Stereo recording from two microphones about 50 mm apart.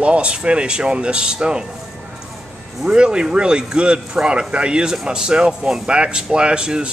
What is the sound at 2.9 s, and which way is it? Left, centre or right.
A man's voice, centre.